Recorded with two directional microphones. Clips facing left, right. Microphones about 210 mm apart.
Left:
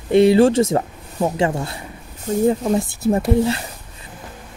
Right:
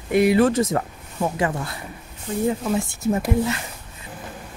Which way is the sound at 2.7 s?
35° left (ahead or behind).